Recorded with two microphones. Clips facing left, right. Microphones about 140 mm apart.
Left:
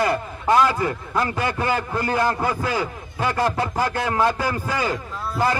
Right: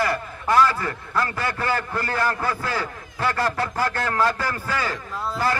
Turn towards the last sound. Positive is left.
turn(degrees=20)  # may be behind; listen again after turning